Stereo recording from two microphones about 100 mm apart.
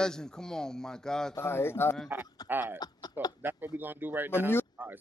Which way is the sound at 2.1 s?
20° right (ahead or behind).